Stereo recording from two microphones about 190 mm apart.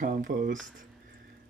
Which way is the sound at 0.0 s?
45° right (ahead or behind).